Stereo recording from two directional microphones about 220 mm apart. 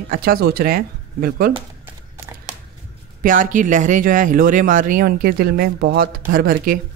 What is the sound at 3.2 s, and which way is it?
Speech, 40° right (ahead or behind).